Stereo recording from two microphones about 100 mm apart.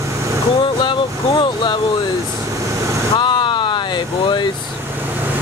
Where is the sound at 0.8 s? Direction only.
55° left (ahead or behind).